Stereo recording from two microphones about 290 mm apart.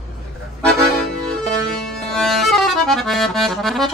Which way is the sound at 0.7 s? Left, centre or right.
Centre.